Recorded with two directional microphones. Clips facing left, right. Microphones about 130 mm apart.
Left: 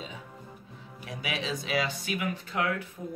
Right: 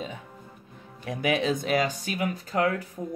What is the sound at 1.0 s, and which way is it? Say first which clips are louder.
Speech: right 9 dB; 50° right (ahead or behind).